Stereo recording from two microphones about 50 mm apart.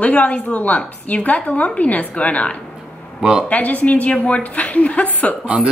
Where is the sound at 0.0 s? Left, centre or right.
Left.